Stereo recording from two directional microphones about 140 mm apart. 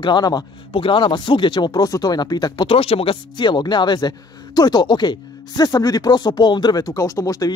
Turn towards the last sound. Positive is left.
turn(degrees=25)  # may be behind; listen again after turning